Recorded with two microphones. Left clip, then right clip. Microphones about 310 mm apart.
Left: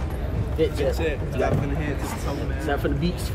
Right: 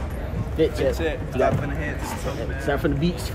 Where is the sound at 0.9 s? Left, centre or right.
Centre.